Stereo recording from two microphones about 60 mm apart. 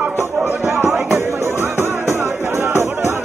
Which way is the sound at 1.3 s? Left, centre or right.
Right.